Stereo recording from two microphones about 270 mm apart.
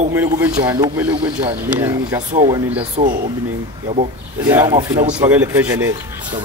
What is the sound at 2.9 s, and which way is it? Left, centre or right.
Speech, right.